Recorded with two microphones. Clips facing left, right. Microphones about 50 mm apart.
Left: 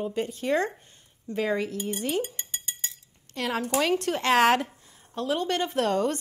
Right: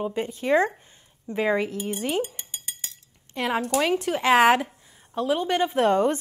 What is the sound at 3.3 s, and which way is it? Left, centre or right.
A woman's voice, centre.